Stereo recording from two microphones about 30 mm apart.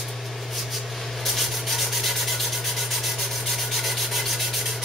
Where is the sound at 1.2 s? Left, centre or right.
Centre.